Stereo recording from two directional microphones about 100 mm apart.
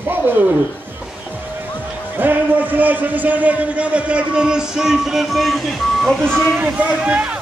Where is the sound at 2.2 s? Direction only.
20° right (ahead or behind); by 6.1 s centre (ahead or behind).